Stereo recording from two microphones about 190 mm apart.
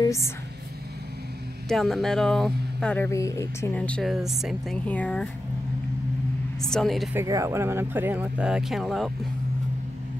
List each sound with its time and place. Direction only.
0.0 s speech: 15° left (ahead or behind)
1.7 s speech: centre (ahead or behind)
6.6 s speech: centre (ahead or behind)
7.2 s speech: 15° right (ahead or behind)